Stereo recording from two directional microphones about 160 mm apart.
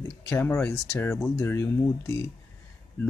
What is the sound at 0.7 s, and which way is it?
Speech, 5° left (ahead or behind).